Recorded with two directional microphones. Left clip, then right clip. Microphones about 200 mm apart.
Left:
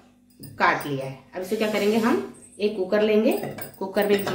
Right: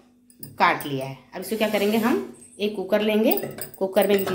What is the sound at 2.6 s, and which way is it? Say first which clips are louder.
Speech: left 1 dB; 45° right (ahead or behind).